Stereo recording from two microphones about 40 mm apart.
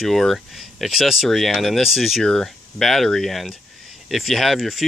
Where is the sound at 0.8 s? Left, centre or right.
Centre.